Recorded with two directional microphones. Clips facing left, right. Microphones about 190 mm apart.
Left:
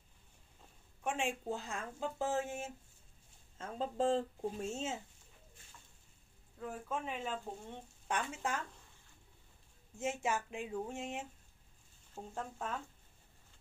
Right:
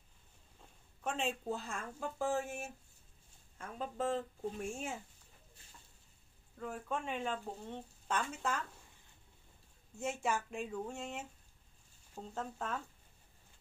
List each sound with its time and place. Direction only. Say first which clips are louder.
1.0 s speech: even; 15° left (ahead or behind)
6.6 s speech: right 1 dB; 5° left (ahead or behind)
8.1 s speech: right 1 dB; 15° left (ahead or behind)
9.9 s speech: even; 20° left (ahead or behind)